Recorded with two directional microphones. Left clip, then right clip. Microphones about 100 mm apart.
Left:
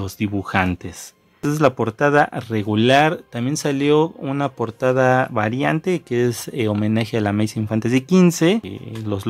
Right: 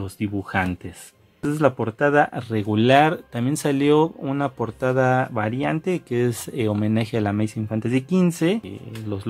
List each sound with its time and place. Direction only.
0.0 s speech: 35° left (ahead or behind)
1.8 s speech: 30° left (ahead or behind); by 4.1 s 5° right (ahead or behind)
4.2 s speech: 15° left (ahead or behind); by 9.2 s 40° left (ahead or behind)